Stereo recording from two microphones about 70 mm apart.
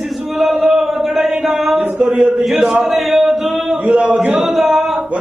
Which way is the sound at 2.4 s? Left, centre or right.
Centre.